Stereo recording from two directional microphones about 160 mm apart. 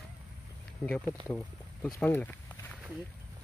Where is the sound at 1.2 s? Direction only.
10° left (ahead or behind).